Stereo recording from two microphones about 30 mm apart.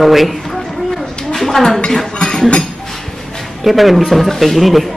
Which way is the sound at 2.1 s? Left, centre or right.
Left.